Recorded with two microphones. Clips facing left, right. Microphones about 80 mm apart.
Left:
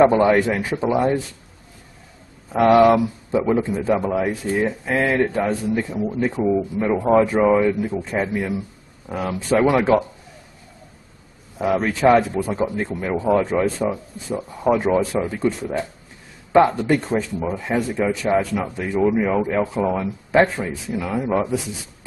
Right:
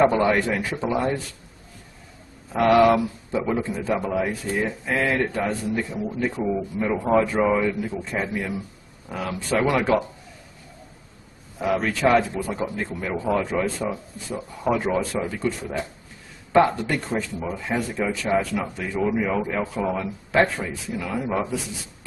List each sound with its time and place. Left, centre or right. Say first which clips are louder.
0.0 s speech: left 4 dB; centre
2.5 s speech: left 3 dB; left
11.5 s speech: left 3 dB; centre